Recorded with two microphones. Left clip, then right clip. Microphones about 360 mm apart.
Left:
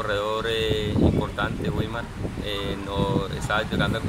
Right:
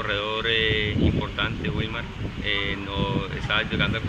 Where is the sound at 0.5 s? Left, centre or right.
Left.